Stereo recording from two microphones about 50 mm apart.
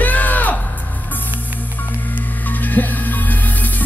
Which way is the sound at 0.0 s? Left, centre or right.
Left.